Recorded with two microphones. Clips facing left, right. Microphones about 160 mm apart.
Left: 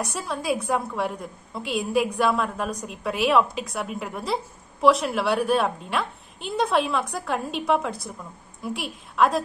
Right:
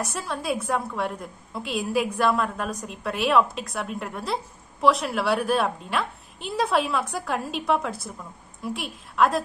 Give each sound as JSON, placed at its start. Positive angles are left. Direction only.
{"t": 0.0, "sound": "a woman's voice", "side_deg": 0}